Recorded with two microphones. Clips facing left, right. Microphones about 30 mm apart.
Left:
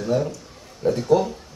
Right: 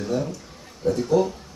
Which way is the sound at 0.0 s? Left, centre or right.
Centre.